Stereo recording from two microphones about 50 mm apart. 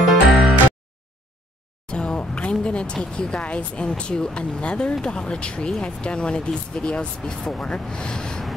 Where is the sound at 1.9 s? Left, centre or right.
Left.